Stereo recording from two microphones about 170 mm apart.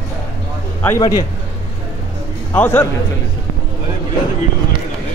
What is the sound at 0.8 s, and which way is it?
Speech, 20° left (ahead or behind).